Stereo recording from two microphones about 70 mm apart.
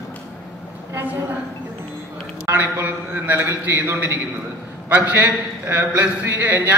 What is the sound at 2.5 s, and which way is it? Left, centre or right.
A man's voice, right.